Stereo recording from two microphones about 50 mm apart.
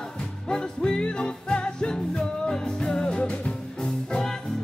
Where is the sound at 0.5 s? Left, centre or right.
Centre.